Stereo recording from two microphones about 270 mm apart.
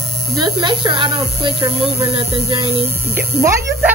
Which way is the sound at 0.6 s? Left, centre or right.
Centre.